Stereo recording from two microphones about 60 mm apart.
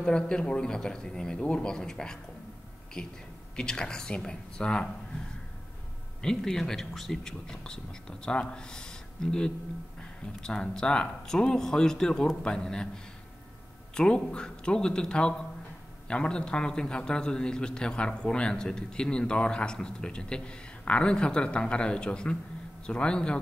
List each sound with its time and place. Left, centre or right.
0.0 s a man's voice: centre
6.2 s a man's voice: centre
13.9 s a man's voice: centre